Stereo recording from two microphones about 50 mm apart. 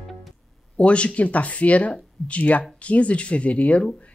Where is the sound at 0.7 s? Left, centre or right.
Left.